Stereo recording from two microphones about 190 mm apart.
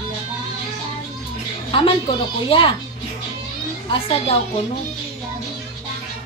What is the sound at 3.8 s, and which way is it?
Speech, 30° left (ahead or behind).